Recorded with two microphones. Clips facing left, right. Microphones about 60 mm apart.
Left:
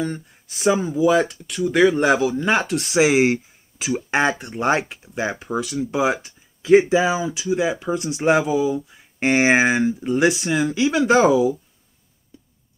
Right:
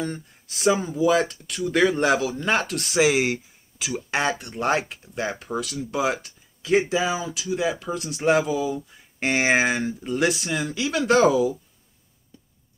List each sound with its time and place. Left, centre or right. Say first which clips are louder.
0.0 s speech: left 4 dB; centre
4.4 s speech: left 3 dB; centre